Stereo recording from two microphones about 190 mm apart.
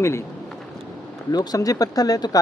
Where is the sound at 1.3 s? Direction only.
20° left (ahead or behind).